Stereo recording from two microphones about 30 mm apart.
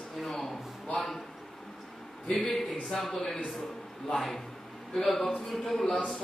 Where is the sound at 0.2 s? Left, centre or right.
Centre.